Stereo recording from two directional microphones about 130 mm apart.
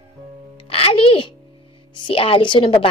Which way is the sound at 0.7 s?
45° left (ahead or behind).